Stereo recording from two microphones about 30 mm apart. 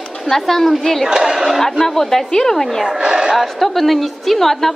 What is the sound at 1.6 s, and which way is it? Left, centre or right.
A woman's voice, centre.